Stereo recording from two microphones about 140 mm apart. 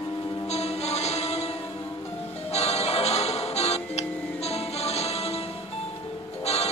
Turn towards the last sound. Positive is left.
turn(degrees=45)  # may be behind; listen again after turning